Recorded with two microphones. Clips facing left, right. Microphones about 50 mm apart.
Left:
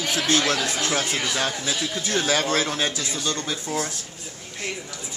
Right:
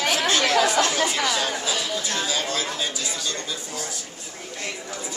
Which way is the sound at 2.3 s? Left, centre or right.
Left.